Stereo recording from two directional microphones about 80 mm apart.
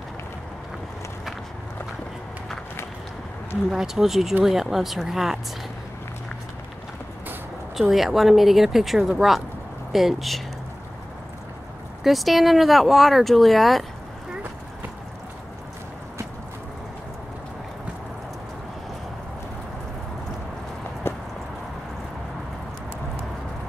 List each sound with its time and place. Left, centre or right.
3.7 s speech: centre
7.9 s speech: centre
12.0 s speech: centre
21.0 s a sound: left